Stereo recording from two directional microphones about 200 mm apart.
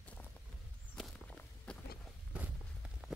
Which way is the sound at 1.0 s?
5° left (ahead or behind).